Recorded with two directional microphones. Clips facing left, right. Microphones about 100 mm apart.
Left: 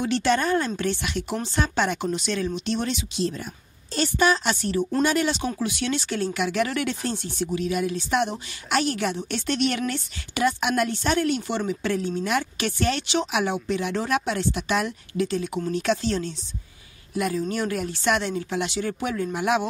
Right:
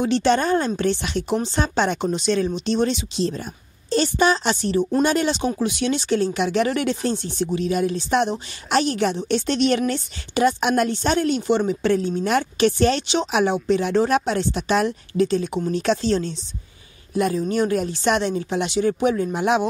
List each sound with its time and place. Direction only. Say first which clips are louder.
0.0 s speech: right 4 dB; 25° right (ahead or behind)